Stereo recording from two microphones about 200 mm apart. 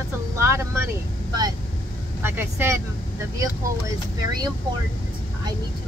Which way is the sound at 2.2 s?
10° right (ahead or behind).